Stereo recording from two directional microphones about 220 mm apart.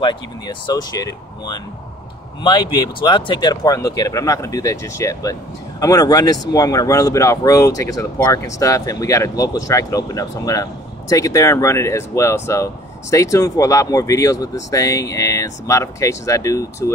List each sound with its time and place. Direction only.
0.0 s speech: 20° left (ahead or behind)